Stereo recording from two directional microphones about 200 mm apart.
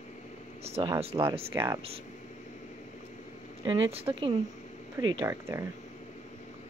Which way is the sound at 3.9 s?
30° right (ahead or behind).